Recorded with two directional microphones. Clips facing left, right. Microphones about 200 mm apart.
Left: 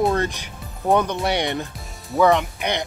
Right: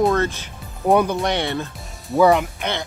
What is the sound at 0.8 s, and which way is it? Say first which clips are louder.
Speech: right 3 dB; 5° right (ahead or behind).